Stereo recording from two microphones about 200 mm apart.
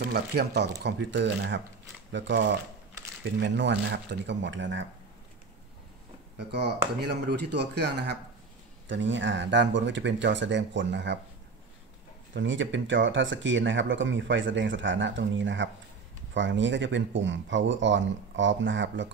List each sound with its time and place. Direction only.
0.0 s speech: 50° right (ahead or behind)
6.3 s speech: 55° right (ahead or behind)
8.8 s speech: 70° right (ahead or behind)
12.4 s speech: 65° right (ahead or behind)